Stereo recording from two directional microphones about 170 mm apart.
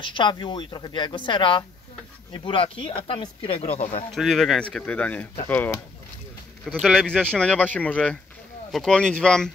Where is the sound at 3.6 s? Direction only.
45° left (ahead or behind).